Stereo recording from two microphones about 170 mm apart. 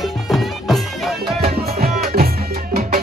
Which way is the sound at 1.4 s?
65° right (ahead or behind).